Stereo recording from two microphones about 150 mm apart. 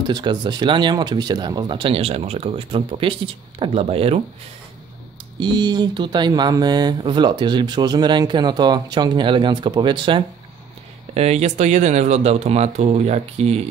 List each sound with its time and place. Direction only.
0.1 s speech: 30° right (ahead or behind)
5.4 s speech: 30° right (ahead or behind)
11.1 s speech: 45° right (ahead or behind)